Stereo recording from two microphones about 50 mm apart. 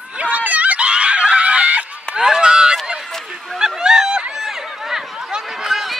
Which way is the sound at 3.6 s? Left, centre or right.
Centre.